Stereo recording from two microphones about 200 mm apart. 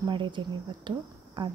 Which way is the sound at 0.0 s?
25° right (ahead or behind).